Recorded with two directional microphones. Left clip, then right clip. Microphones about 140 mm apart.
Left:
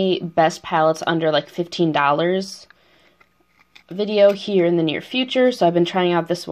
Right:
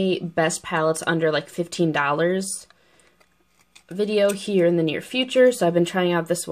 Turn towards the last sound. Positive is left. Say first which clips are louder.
# left 3 dB
turn(degrees=-10)  # may be behind; listen again after turning